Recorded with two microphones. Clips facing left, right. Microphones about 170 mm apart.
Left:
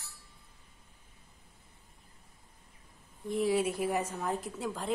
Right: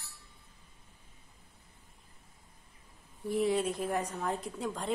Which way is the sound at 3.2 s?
Centre (ahead or behind).